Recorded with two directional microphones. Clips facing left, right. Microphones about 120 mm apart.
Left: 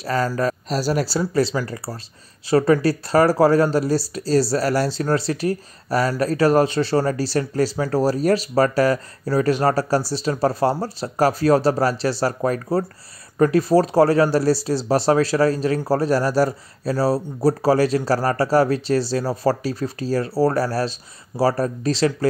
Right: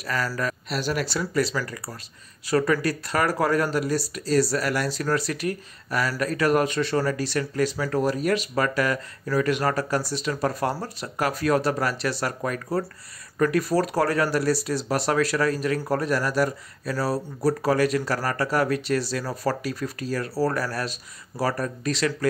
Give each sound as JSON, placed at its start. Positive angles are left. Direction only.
{"t": 0.0, "sound": "speech", "side_deg": 30}